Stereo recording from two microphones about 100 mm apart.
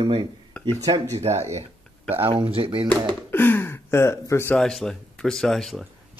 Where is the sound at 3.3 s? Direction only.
20° left (ahead or behind).